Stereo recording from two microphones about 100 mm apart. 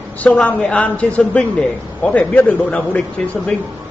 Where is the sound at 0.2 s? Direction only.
15° left (ahead or behind).